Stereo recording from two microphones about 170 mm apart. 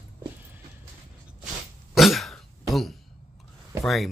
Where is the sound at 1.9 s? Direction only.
Centre (ahead or behind).